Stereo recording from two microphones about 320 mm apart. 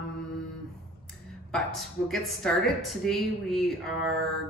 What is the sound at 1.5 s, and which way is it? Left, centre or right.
Speech, centre.